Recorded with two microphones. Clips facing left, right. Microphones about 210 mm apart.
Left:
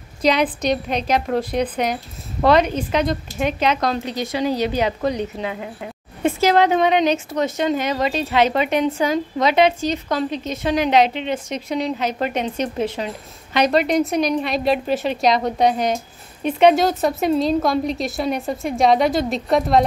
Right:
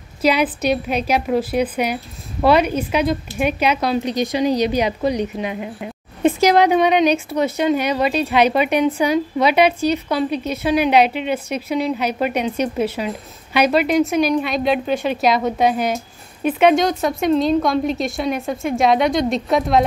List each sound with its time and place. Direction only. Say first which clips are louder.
0.2 s speech: right 1 dB; 5° right (ahead or behind)